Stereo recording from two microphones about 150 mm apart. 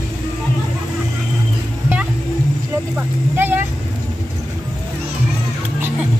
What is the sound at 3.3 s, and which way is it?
Vehicle, 15° right (ahead or behind).